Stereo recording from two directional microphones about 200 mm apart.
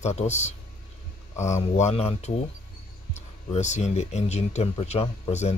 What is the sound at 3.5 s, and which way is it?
Speech, 35° left (ahead or behind).